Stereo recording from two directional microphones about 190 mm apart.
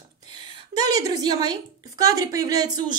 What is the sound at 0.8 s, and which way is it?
A woman's voice, 20° right (ahead or behind).